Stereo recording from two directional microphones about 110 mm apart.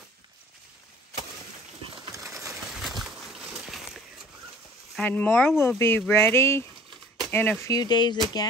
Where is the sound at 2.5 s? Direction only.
Centre (ahead or behind).